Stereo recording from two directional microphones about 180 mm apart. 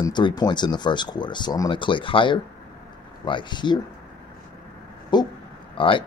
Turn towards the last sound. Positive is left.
turn(degrees=30)  # may be behind; listen again after turning